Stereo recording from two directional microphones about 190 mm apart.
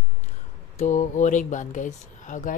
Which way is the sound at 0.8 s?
40° left (ahead or behind).